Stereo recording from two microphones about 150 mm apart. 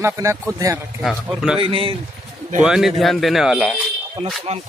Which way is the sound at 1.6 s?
35° right (ahead or behind).